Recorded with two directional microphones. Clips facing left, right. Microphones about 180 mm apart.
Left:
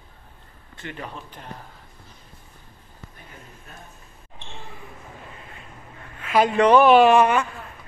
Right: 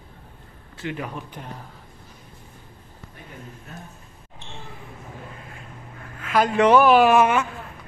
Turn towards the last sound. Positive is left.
turn(degrees=-5)  # may be behind; listen again after turning